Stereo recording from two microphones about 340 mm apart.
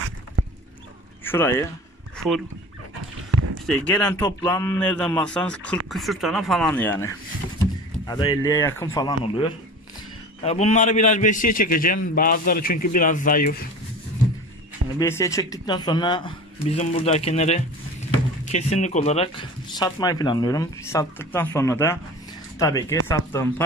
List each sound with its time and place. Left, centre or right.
1.2 s speech: centre
2.1 s dog: centre
3.3 s a sound: right
3.6 s a man's voice: centre
8.1 s a man's voice: centre
15.0 s speech: centre